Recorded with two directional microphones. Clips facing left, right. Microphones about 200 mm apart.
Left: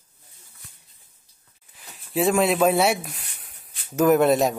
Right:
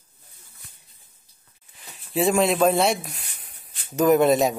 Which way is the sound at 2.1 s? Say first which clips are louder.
Even; centre (ahead or behind).